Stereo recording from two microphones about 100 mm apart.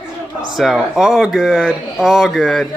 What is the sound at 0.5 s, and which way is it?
A man's voice, centre (ahead or behind).